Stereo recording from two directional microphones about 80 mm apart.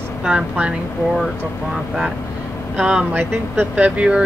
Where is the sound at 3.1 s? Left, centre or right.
Right.